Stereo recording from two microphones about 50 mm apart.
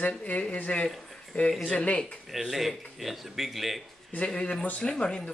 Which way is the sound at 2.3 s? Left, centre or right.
Centre.